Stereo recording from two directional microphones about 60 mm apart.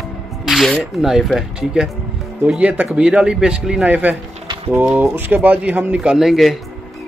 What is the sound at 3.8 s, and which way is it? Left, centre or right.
Speech, right.